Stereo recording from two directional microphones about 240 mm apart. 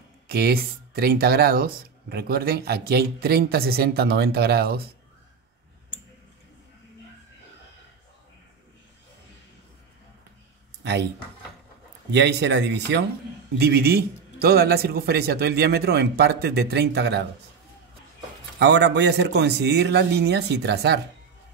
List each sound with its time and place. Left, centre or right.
0.3 s speech: right
10.8 s a sound: right
12.1 s a man's voice: right
18.6 s a man's voice: right